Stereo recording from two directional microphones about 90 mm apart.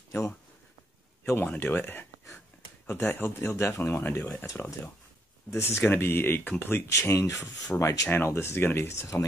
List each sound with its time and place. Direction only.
1.6 s speech: 25° left (ahead or behind)